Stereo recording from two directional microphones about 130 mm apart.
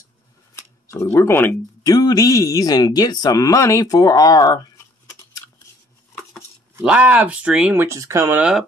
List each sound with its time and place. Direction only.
0.8 s speech: 20° left (ahead or behind)
6.8 s speech: 10° right (ahead or behind)
8.4 s speech: 5° right (ahead or behind)